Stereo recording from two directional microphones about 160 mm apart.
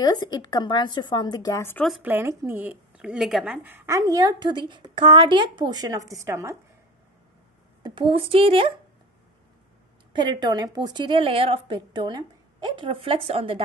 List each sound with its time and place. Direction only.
0.0 s a woman's voice: 25° left (ahead or behind)
1.9 s speech: 10° right (ahead or behind)
7.8 s a woman's voice: 30° right (ahead or behind)
10.1 s a woman's voice: 25° right (ahead or behind)